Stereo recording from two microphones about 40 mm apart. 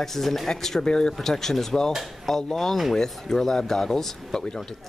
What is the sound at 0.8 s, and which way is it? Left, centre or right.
Speech, left.